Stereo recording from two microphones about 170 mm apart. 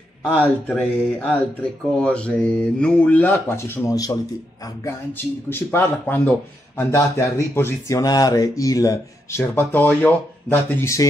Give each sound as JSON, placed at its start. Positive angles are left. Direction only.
{"t": 0.2, "sound": "speech", "side_deg": 10}